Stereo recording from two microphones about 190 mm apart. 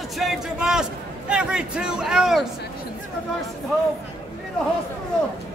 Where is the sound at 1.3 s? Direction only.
5° right (ahead or behind).